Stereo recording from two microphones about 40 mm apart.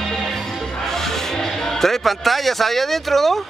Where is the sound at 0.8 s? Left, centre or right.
Centre.